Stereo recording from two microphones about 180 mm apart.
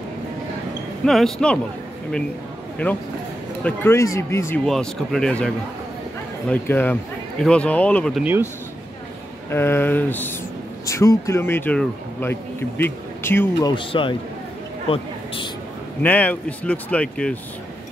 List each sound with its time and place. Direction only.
1.0 s speech: centre (ahead or behind)
2.8 s speech: 10° left (ahead or behind)
4.6 s speech: 5° left (ahead or behind)
8.2 s speech: 10° right (ahead or behind)
9.5 s speech: 10° left (ahead or behind)
13.6 s speech: 25° left (ahead or behind)
16.0 s speech: 10° left (ahead or behind)